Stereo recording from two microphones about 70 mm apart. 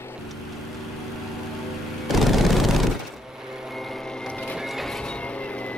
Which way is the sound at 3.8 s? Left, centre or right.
Centre.